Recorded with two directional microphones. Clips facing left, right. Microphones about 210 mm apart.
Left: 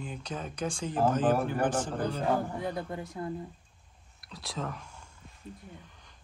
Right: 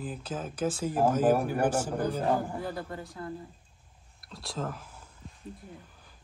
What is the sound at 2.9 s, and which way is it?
Speech, 20° left (ahead or behind).